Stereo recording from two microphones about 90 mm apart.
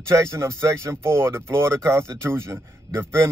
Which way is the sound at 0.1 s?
30° right (ahead or behind).